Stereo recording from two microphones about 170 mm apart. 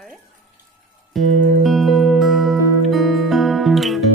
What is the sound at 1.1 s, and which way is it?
Music, centre (ahead or behind).